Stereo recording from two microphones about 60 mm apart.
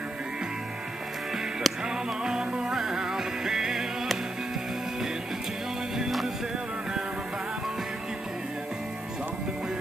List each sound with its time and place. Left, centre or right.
1.3 s music: centre
5.9 s music: centre